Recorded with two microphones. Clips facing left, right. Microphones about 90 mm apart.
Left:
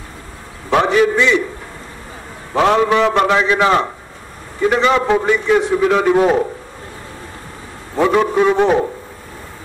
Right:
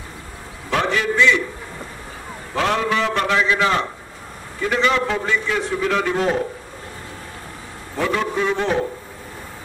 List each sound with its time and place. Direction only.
0.7 s a man's voice: 20° left (ahead or behind)
2.5 s a man's voice: 20° left (ahead or behind)
8.0 s a man's voice: 25° left (ahead or behind)
8.5 s a man's voice: 15° left (ahead or behind)